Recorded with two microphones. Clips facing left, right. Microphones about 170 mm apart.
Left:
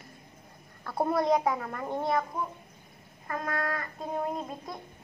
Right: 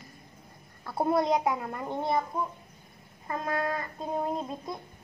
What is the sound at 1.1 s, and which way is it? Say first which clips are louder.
A child's voice: even; 20° right (ahead or behind).